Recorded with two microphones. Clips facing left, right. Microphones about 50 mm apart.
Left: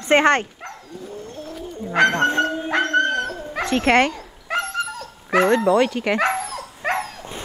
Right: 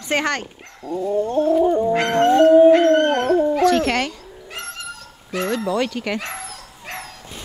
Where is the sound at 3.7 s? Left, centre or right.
Left.